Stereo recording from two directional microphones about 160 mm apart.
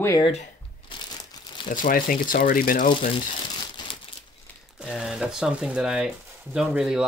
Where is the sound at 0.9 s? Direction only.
30° left (ahead or behind).